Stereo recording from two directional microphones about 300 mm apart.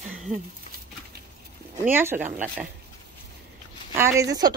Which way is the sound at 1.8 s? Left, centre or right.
Centre.